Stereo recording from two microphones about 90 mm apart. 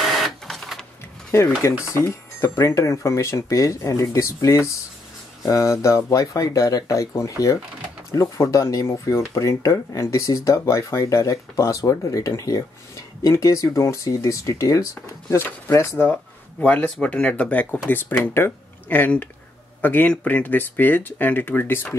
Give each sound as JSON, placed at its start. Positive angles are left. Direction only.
{"t": 0.0, "sound": "printer", "side_deg": 0}
{"t": 1.6, "sound": "speech", "side_deg": 30}
{"t": 16.6, "sound": "speech", "side_deg": 15}